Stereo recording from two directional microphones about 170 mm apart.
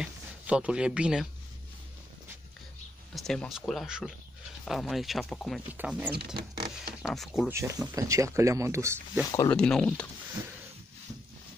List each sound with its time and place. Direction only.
0.0 s speech: 5° right (ahead or behind)
3.2 s speech: centre (ahead or behind)
5.7 s speech: 10° right (ahead or behind)
7.5 s speech: 15° right (ahead or behind)
9.2 s speech: 20° left (ahead or behind)
9.5 s speech: 5° left (ahead or behind)